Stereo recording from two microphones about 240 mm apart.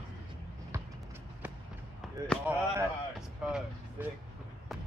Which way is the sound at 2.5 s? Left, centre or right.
Centre.